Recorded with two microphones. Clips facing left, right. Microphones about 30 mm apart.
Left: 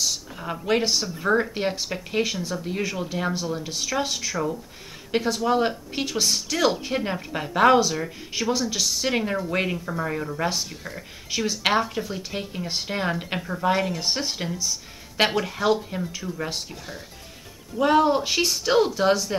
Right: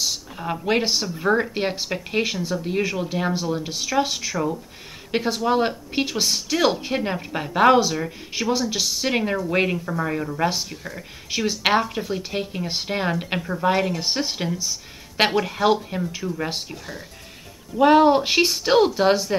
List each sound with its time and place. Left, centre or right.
0.0 s speech: centre
2.3 s speech: centre
16.7 s speech: centre
17.7 s speech: right